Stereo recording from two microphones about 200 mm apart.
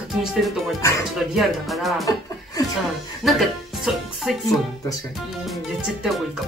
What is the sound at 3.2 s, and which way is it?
Speech, centre (ahead or behind).